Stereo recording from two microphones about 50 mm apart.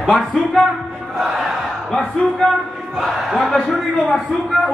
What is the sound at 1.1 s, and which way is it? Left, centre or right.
Crowd, centre.